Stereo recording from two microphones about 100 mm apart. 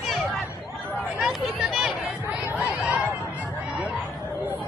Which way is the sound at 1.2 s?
5° right (ahead or behind).